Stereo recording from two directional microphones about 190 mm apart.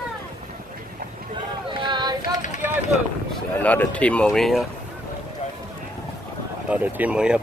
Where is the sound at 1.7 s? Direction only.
25° right (ahead or behind).